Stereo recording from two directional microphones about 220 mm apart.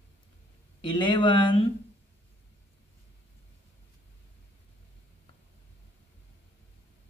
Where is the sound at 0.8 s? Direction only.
20° left (ahead or behind).